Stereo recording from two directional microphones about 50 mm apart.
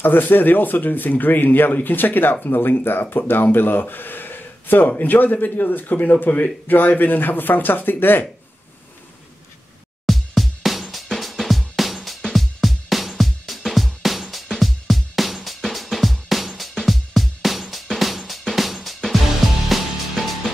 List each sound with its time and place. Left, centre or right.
0.0 s speech: left
10.0 s music: centre